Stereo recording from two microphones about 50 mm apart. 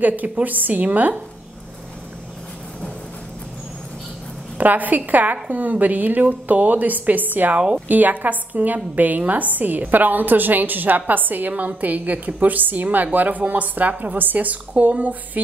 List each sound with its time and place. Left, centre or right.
0.0 s a woman's voice: right
4.6 s a woman's voice: right
7.5 s a woman's voice: right
7.9 s a woman's voice: right